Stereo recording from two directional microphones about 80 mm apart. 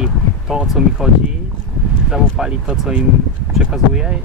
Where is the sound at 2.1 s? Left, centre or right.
Centre.